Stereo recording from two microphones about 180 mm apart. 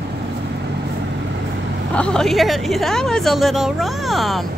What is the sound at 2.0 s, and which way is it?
A woman's voice, 5° left (ahead or behind).